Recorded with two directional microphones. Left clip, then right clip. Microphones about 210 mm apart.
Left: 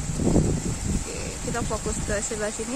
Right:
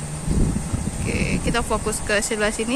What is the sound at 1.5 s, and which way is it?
Speech, 10° right (ahead or behind).